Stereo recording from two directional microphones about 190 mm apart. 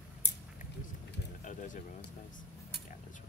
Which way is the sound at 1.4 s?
40° left (ahead or behind).